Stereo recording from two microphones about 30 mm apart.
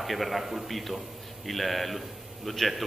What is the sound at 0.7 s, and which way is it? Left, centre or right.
A man's voice, centre.